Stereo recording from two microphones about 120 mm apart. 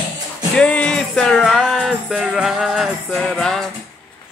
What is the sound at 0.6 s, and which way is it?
Music, 10° left (ahead or behind).